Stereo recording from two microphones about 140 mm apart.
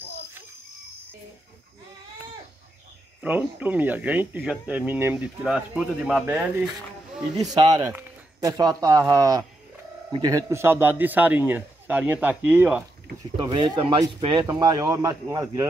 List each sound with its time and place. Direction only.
3.2 s speech: 10° right (ahead or behind)
7.5 s speech: 25° right (ahead or behind); by 12.8 s 10° right (ahead or behind)
13.5 s speech: 35° right (ahead or behind)